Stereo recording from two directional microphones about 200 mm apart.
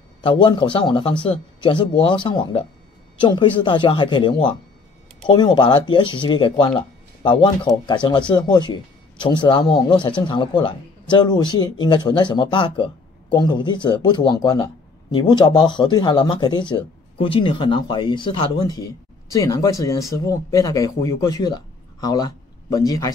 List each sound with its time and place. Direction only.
0.2 s speech: 25° left (ahead or behind)